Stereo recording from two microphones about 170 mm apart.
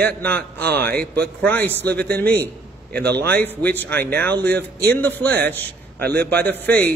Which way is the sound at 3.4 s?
10° left (ahead or behind).